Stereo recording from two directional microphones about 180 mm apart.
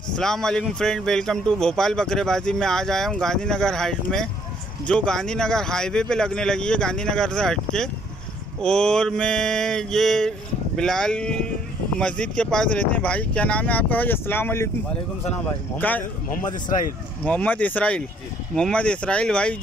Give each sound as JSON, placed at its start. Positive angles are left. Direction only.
{"t": 0.1, "sound": "a man's voice", "side_deg": 5}
{"t": 15.8, "sound": "speech", "side_deg": 10}
{"t": 16.4, "sound": "speech", "side_deg": 45}
{"t": 17.2, "sound": "a man's voice", "side_deg": 10}